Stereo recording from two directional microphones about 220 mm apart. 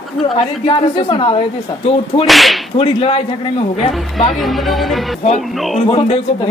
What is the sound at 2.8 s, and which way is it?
Speech, 25° left (ahead or behind).